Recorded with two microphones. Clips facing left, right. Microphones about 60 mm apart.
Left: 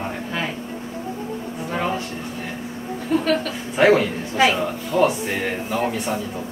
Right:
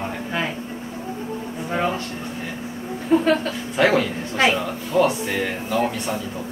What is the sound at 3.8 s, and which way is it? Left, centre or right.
Speech, centre.